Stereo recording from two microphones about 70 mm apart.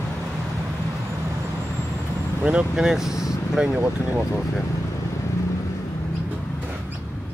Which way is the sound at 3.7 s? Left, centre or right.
Right.